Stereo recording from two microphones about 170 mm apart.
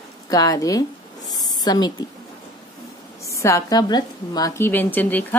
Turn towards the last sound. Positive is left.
turn(degrees=10)  # may be behind; listen again after turning